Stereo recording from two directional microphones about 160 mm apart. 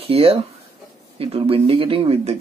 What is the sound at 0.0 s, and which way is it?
Speech, 35° right (ahead or behind).